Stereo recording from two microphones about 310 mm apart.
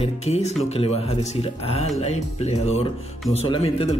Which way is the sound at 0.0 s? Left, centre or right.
Centre.